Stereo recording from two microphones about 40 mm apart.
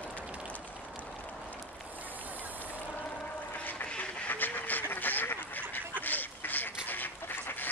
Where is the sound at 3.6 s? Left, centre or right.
Left.